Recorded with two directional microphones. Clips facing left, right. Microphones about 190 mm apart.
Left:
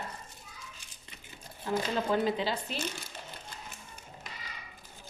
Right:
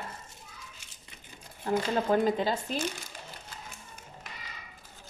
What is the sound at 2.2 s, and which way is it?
Speech, 45° right (ahead or behind).